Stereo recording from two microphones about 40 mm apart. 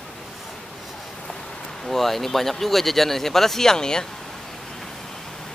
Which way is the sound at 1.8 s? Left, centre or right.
Centre.